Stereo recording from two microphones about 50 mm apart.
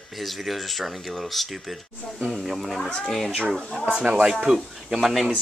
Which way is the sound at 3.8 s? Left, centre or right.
Centre.